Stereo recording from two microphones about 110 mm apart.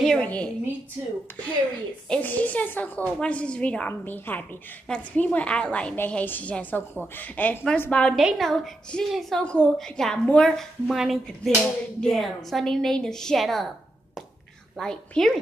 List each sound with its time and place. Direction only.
0.0 s a sound: 5° left (ahead or behind)
2.0 s a woman's voice: 15° left (ahead or behind)
8.1 s a woman's voice: centre (ahead or behind)
14.8 s a woman's voice: 5° left (ahead or behind)